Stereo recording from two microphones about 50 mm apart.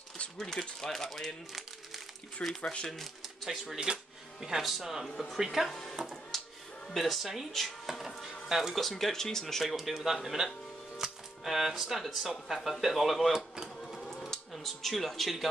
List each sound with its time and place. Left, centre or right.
0.4 s speech: centre
2.6 s speech: centre
3.4 s speech: centre
5.1 s speech: centre
5.4 s speech: centre
5.7 s speech: centre
6.3 s a sound: centre
6.9 s speech: centre
8.8 s speech: centre